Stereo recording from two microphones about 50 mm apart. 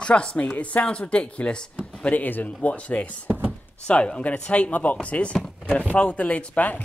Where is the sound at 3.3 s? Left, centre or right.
Right.